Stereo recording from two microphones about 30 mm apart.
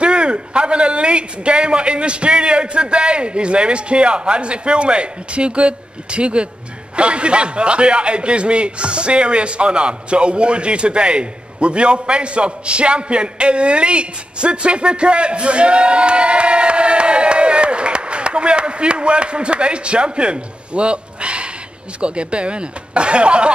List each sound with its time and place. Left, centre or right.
0.0 s a man's voice: right